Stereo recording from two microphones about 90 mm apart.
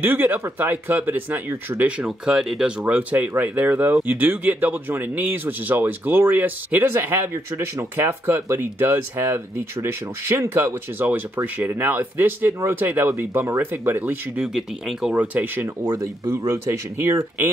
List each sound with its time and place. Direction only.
0.0 s speech: 20° right (ahead or behind)
1.9 s speech: 10° right (ahead or behind)
2.8 s speech: 15° right (ahead or behind)
14.3 s speech: 10° right (ahead or behind)
15.1 s speech: 20° right (ahead or behind)